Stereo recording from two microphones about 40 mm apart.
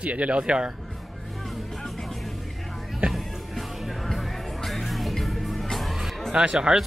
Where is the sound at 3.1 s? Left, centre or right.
Centre.